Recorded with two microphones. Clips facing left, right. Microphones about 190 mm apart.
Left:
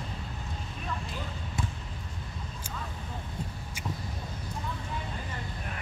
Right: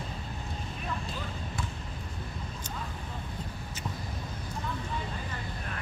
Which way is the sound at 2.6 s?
10° left (ahead or behind).